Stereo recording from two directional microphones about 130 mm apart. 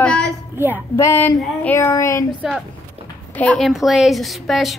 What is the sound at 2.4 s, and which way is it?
Speech, 5° right (ahead or behind).